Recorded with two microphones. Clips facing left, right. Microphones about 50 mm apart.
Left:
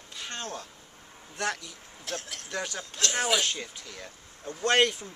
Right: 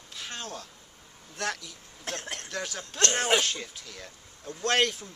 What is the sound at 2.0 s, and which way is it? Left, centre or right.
Speech, right.